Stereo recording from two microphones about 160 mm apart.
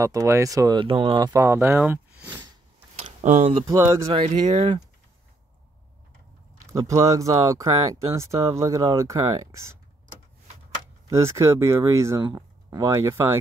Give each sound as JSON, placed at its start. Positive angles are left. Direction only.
{"t": 0.0, "sound": "speech", "side_deg": -20}
{"t": 1.3, "sound": "speech", "side_deg": -15}
{"t": 3.0, "sound": "a sound", "side_deg": -45}
{"t": 3.6, "sound": "speech", "side_deg": -20}
{"t": 4.1, "sound": "speech", "side_deg": -40}
{"t": 6.7, "sound": "speech", "side_deg": -20}
{"t": 11.1, "sound": "speech", "side_deg": -15}